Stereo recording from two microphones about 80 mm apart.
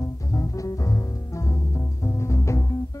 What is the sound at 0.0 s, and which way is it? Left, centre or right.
Music, left.